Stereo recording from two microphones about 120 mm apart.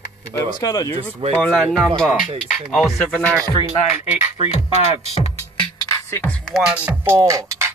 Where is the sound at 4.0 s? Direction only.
70° left (ahead or behind).